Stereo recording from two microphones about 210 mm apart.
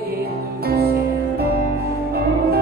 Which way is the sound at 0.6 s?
50° right (ahead or behind).